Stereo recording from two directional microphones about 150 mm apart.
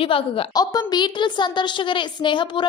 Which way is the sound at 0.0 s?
35° left (ahead or behind).